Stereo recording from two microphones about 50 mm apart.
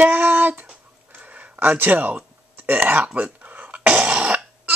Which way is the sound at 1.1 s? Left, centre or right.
Right.